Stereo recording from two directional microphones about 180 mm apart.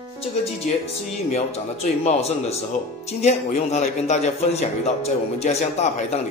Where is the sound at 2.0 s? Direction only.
35° left (ahead or behind).